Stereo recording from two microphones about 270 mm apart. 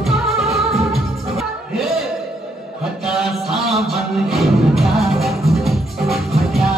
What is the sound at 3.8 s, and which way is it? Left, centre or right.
Music, centre.